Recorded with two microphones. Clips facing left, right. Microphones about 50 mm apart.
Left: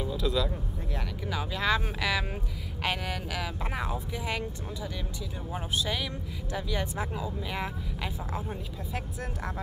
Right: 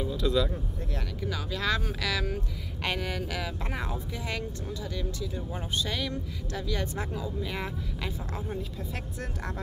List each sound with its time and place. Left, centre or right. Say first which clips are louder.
0.0 s a sound: right 2 dB; centre
1.3 s speech: left 2 dB; centre
2.8 s speech: even; centre
5.8 s speech: right 1 dB; centre